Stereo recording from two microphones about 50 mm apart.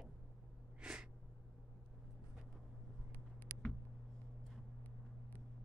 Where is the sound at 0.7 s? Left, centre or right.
Right.